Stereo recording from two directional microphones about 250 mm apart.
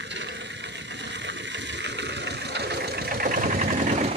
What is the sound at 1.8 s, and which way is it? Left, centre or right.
Engine, right.